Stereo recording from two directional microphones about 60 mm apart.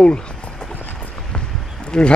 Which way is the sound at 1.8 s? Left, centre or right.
Centre.